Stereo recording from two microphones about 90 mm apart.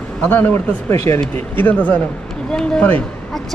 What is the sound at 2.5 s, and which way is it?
Speech, 10° left (ahead or behind).